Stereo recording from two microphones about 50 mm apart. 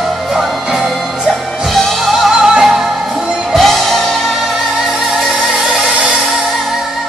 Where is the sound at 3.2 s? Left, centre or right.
Centre.